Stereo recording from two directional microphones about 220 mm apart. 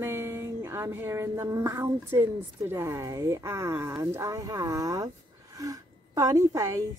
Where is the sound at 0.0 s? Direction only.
10° right (ahead or behind).